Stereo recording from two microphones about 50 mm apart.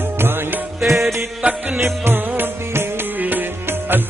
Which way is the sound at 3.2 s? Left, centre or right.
Right.